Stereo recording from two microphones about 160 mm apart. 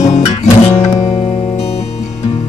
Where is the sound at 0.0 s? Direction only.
45° left (ahead or behind).